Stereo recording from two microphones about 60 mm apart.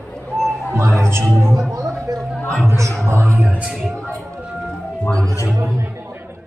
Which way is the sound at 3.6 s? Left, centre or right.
Centre.